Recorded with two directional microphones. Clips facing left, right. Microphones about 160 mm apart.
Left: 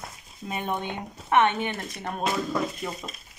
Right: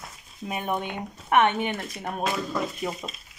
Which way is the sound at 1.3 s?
15° right (ahead or behind).